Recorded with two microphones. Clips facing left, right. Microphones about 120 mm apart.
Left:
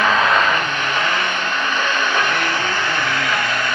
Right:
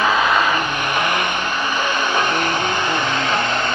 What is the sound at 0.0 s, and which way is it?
Vehicle, 10° right (ahead or behind).